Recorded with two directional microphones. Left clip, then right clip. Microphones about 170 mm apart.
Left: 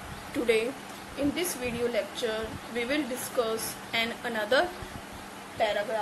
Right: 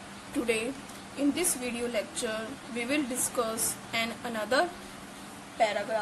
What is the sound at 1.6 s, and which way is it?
Speech, 25° right (ahead or behind).